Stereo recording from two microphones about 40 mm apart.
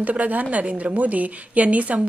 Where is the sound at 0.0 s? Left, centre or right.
Right.